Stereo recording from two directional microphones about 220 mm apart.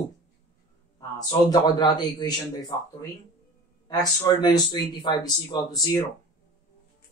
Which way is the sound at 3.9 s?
15° left (ahead or behind).